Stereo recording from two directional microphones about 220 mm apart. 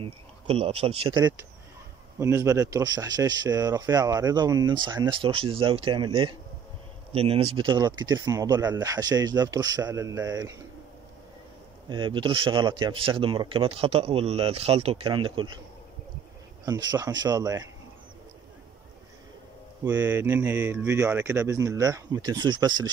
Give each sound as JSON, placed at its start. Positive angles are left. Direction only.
{"t": 0.0, "sound": "speech", "side_deg": -25}
{"t": 11.9, "sound": "speech", "side_deg": -20}
{"t": 16.6, "sound": "speech", "side_deg": -15}
{"t": 19.8, "sound": "speech", "side_deg": -10}